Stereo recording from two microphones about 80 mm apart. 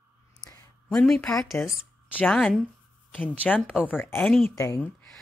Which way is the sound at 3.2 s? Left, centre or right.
Left.